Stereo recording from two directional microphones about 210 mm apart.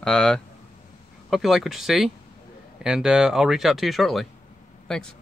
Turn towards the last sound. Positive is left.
turn(degrees=5)  # may be behind; listen again after turning